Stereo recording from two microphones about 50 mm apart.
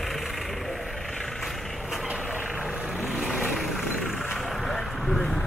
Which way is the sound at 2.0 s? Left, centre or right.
Right.